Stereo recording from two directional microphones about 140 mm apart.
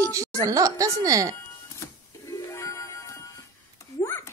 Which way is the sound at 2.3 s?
20° left (ahead or behind).